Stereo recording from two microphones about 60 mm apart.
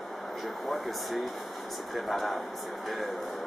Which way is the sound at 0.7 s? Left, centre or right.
Centre.